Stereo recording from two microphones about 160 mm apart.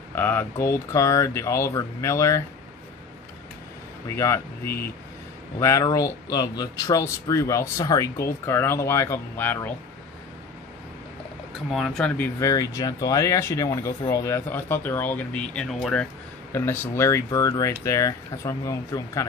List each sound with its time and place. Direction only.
0.1 s speech: 10° left (ahead or behind)
4.1 s speech: 15° left (ahead or behind)
11.7 s speech: centre (ahead or behind); by 19.2 s 20° left (ahead or behind)